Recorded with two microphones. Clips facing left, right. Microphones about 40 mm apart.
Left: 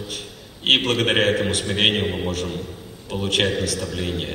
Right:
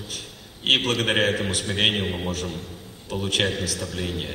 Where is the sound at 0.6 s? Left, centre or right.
Left.